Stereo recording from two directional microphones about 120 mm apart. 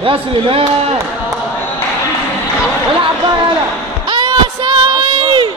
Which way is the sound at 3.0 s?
40° right (ahead or behind).